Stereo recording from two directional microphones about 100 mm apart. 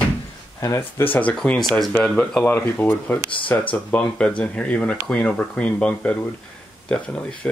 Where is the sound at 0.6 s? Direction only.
30° left (ahead or behind).